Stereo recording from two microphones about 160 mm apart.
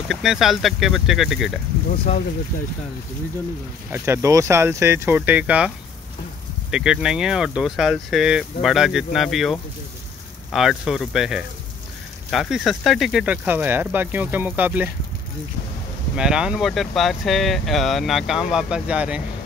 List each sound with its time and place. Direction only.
0.1 s speech: centre (ahead or behind)
3.9 s speech: 15° right (ahead or behind)
6.7 s speech: 5° right (ahead or behind)
16.2 s speech: 5° right (ahead or behind)